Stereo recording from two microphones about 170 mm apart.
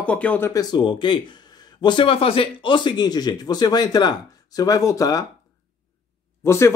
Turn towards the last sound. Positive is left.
turn(degrees=15)  # may be behind; listen again after turning